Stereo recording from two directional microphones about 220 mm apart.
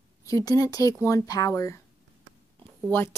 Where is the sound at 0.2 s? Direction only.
15° left (ahead or behind).